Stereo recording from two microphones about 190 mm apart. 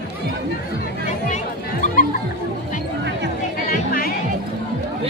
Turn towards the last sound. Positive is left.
turn(degrees=50)  # may be behind; listen again after turning